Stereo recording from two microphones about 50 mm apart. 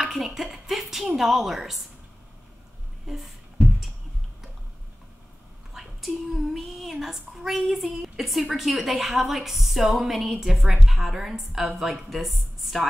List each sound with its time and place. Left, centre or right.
0.1 s speech: centre
3.1 s a sound: centre
5.8 s speech: centre